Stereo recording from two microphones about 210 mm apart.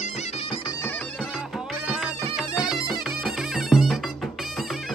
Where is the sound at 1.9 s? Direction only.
Centre (ahead or behind).